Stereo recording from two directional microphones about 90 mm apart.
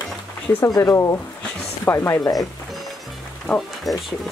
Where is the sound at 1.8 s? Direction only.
25° left (ahead or behind).